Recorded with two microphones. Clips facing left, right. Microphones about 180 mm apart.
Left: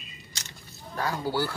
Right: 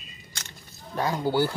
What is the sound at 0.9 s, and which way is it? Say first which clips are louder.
Speech: right 4 dB; 20° right (ahead or behind).